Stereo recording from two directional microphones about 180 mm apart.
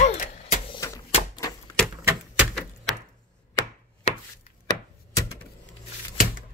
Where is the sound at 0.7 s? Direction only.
20° left (ahead or behind).